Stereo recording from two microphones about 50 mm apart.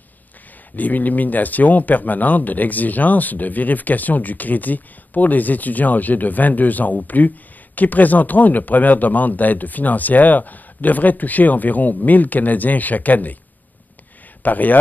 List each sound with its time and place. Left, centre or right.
0.7 s speech: left
14.4 s speech: left